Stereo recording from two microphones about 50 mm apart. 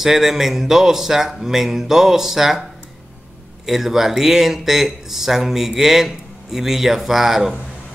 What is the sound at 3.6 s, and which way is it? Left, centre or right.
Speech, centre.